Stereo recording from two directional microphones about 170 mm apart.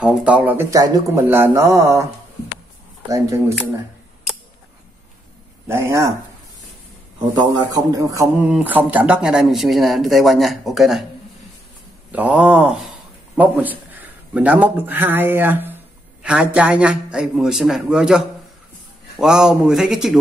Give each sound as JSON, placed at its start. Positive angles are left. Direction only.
{"t": 0.0, "sound": "speech", "side_deg": -5}
{"t": 5.7, "sound": "speech", "side_deg": -15}
{"t": 7.7, "sound": "speech", "side_deg": -20}
{"t": 12.1, "sound": "a man's voice", "side_deg": -10}